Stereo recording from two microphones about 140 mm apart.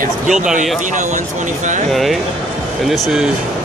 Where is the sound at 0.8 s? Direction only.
60° right (ahead or behind).